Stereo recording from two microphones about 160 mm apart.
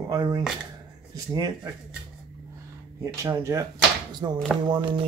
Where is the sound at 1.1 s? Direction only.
25° right (ahead or behind).